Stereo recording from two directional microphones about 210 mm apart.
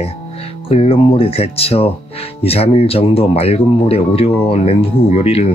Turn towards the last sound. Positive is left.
turn(degrees=30)  # may be behind; listen again after turning